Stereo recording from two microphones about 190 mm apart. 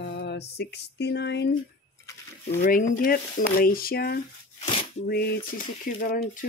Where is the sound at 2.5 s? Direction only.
40° left (ahead or behind).